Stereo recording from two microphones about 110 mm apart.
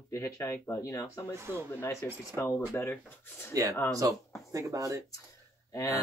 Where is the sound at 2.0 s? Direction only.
25° left (ahead or behind).